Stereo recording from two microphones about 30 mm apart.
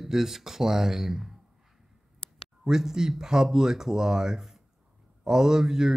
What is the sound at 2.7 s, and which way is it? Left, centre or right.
Speech, centre.